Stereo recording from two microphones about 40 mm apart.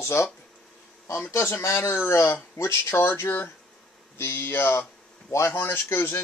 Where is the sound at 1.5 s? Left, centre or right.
Left.